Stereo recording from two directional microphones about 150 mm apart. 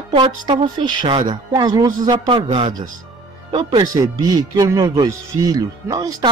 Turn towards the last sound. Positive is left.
turn(degrees=-25)  # may be behind; listen again after turning